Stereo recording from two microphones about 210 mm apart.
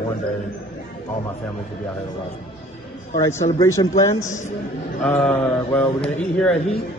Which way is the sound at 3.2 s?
10° left (ahead or behind).